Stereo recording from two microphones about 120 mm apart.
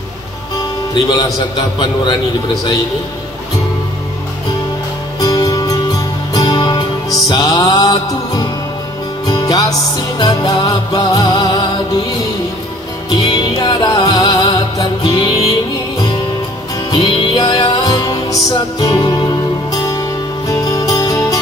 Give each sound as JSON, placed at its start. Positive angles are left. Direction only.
{"t": 0.9, "sound": "music", "side_deg": 40}
{"t": 5.2, "sound": "music", "side_deg": 35}
{"t": 13.1, "sound": "music", "side_deg": 40}
{"t": 16.9, "sound": "music", "side_deg": 45}